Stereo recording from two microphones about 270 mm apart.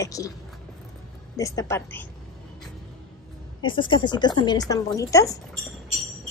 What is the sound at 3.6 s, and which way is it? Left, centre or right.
A woman's voice, centre.